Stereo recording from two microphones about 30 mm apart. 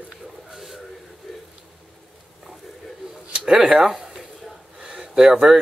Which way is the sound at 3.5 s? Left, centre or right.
Centre.